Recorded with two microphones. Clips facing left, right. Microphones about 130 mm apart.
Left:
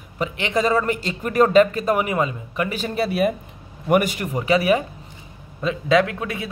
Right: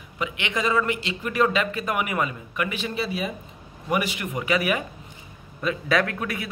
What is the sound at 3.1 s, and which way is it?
Speech, 60° left (ahead or behind).